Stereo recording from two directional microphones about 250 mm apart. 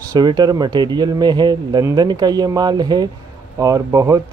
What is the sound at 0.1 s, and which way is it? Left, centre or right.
Speech, centre.